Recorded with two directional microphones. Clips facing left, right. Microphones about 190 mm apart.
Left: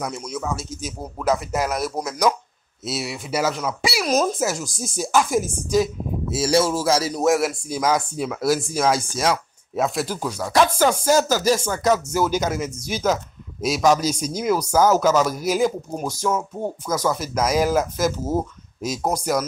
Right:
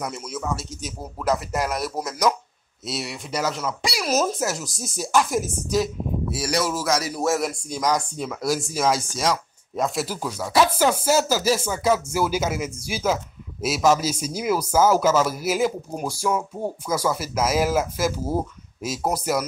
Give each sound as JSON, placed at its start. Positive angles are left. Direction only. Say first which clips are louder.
{"t": 0.0, "sound": "speech", "louder": "left 2 dB", "side_deg": 0}
{"t": 6.3, "sound": "music", "louder": "left 7 dB", "side_deg": 25}
{"t": 7.2, "sound": "speech", "louder": "left 5 dB", "side_deg": 5}